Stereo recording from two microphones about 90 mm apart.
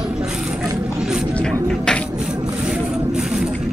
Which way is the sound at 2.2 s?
10° right (ahead or behind).